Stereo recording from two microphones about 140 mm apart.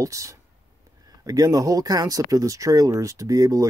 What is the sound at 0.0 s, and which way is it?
Speech, 20° right (ahead or behind).